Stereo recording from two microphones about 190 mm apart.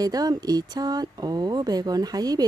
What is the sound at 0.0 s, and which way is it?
Speech, 20° right (ahead or behind).